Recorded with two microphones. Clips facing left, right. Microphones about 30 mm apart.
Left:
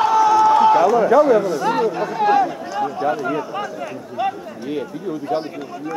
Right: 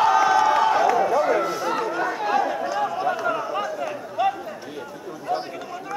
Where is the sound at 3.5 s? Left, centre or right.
Centre.